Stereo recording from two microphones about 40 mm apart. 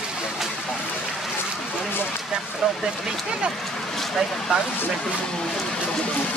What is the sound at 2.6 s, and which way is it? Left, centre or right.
Speech, centre.